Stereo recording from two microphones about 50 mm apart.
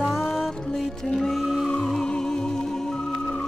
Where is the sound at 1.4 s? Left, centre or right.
Centre.